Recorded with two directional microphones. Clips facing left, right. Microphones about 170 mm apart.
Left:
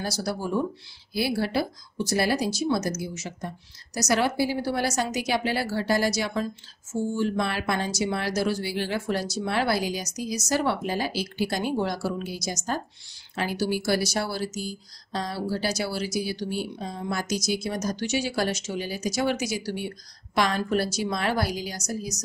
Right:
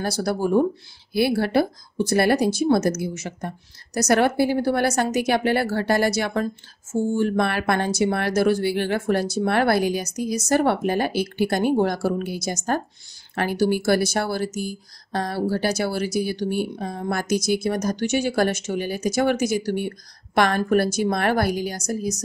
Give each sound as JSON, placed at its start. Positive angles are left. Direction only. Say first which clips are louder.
{"t": 0.0, "sound": "speech", "louder": "right 6 dB", "side_deg": -55}